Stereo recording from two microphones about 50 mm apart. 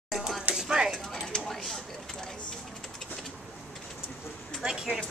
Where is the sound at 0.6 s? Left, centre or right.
Centre.